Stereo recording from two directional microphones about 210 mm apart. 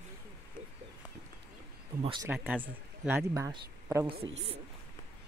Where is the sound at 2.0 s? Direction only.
20° right (ahead or behind).